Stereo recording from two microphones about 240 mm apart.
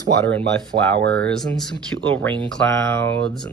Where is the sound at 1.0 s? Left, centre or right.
Right.